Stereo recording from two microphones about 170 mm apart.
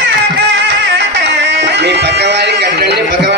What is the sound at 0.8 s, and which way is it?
Music, 90° right.